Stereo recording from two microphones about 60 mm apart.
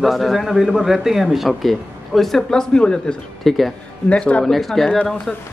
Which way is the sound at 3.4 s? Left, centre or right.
Centre.